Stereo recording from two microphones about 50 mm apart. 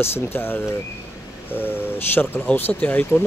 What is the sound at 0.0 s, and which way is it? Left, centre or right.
Speech, left.